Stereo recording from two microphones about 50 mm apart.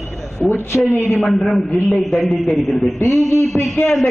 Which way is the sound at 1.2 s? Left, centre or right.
Centre.